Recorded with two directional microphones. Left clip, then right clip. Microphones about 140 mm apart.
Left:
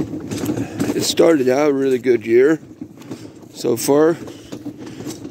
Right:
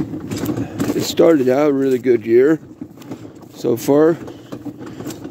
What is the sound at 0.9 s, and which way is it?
Speech, 15° right (ahead or behind).